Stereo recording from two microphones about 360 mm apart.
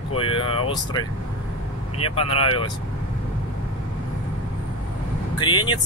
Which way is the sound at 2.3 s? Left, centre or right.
Left.